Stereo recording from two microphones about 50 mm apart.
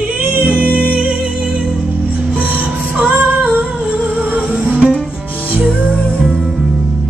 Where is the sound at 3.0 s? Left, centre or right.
Right.